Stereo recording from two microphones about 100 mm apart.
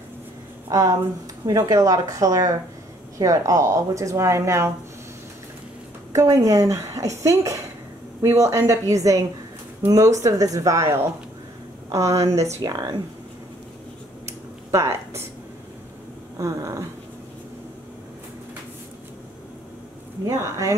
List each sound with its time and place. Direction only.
0.7 s a woman's voice: 35° right (ahead or behind)
6.1 s a woman's voice: 35° right (ahead or behind)
14.2 s a sound: 30° right (ahead or behind)
16.3 s a woman's voice: 35° right (ahead or behind)
20.2 s a woman's voice: 30° right (ahead or behind)